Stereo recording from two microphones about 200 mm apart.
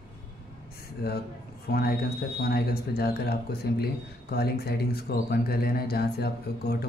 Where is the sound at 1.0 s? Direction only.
50° left (ahead or behind).